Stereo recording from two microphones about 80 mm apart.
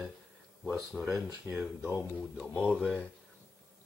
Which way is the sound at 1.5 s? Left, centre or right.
Right.